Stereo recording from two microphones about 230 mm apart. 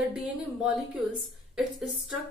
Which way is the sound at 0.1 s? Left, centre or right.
Centre.